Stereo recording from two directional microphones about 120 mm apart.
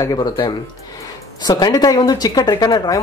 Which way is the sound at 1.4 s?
30° left (ahead or behind).